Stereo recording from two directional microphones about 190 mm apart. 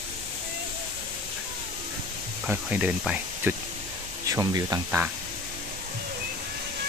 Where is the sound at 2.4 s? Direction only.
5° right (ahead or behind).